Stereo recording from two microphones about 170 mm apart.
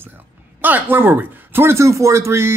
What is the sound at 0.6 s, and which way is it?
Speech, 10° right (ahead or behind).